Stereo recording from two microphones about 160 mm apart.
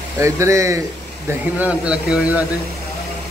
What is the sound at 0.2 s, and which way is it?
Speech, 20° right (ahead or behind).